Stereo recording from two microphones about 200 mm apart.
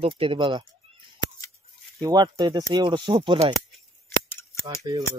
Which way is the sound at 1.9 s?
20° right (ahead or behind).